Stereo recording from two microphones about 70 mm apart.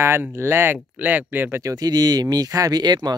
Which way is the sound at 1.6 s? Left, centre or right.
Right.